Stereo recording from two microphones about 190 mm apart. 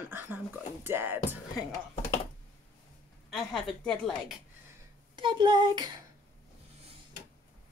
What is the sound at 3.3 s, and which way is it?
A woman's voice, centre (ahead or behind).